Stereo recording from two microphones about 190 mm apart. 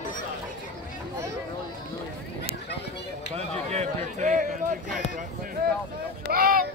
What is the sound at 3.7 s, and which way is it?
Speech, 35° right (ahead or behind).